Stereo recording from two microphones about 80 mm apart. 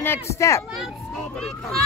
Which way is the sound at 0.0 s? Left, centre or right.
Left.